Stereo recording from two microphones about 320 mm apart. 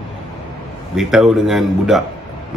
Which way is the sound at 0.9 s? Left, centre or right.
Centre.